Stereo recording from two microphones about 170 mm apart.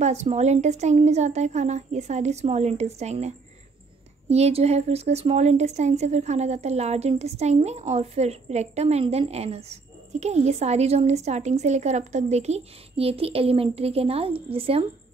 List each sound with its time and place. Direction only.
0.0 s a woman's voice: 40° right (ahead or behind)